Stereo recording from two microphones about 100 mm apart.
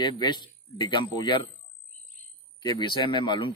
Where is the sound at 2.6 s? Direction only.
45° left (ahead or behind).